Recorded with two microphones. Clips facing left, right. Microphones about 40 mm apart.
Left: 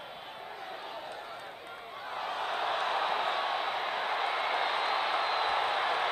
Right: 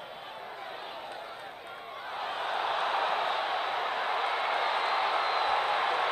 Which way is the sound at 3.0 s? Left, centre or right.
Centre.